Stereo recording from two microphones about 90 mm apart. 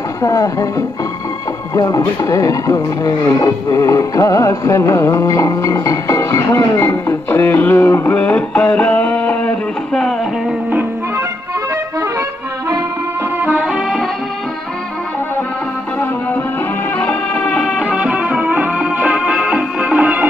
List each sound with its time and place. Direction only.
0.2 s speech: 40° left (ahead or behind)
6.8 s music: 30° left (ahead or behind)
13.4 s music: 20° right (ahead or behind)
13.7 s music: centre (ahead or behind)
17.0 s music: 15° left (ahead or behind)
17.6 s music: 5° right (ahead or behind)